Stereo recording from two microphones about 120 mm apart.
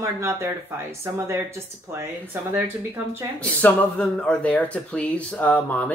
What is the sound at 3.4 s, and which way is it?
Speech, 10° left (ahead or behind).